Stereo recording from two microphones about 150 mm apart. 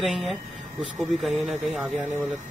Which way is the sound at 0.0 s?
Centre (ahead or behind).